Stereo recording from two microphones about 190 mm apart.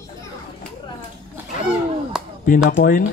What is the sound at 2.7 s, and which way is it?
Speech, 45° left (ahead or behind).